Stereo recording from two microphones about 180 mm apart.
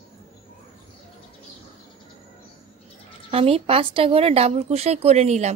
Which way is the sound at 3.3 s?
30° right (ahead or behind).